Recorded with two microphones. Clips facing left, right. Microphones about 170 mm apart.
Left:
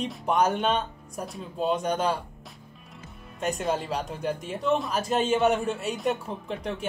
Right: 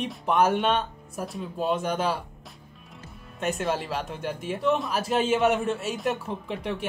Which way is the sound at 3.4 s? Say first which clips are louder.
Even; centre (ahead or behind).